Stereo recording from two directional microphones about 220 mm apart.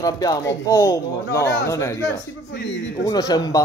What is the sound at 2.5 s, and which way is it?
Speech, 50° left (ahead or behind).